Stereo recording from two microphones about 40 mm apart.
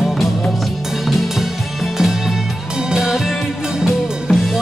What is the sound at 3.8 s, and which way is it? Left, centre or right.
Music, centre.